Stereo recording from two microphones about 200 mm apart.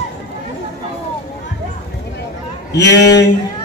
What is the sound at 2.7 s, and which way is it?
Speech, 60° left (ahead or behind).